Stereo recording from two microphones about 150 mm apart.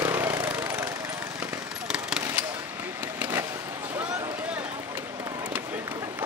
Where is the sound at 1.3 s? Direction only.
5° right (ahead or behind).